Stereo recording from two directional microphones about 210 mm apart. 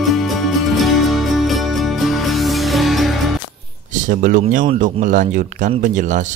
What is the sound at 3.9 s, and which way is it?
A man's voice, 40° right (ahead or behind).